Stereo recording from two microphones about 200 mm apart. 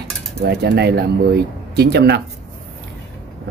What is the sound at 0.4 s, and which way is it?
Speech, 55° right (ahead or behind).